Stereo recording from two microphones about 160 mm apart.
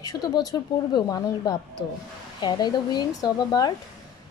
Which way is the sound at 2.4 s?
25° left (ahead or behind).